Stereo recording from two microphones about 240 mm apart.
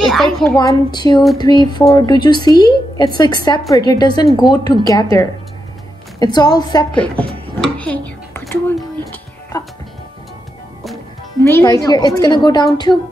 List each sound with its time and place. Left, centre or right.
0.0 s a sound: centre
0.6 s a woman's voice: centre
6.9 s a woman's voice: centre
7.6 s a sound: centre
8.7 s music: centre
11.4 s a woman's voice: centre